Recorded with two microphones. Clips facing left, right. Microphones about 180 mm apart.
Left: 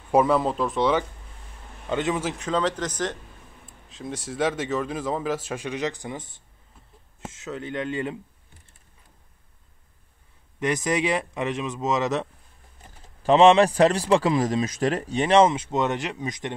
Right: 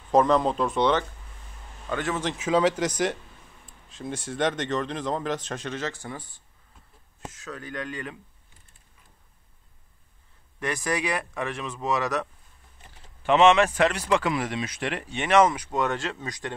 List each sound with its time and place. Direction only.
0.1 s speech: 10° left (ahead or behind)
1.9 s speech: 20° left (ahead or behind)
2.3 s speech: 5° right (ahead or behind)
3.6 s speech: centre (ahead or behind); by 8.2 s 25° left (ahead or behind)
10.6 s speech: 20° left (ahead or behind)